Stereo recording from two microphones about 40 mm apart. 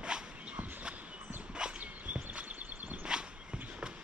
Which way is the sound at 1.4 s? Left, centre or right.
Right.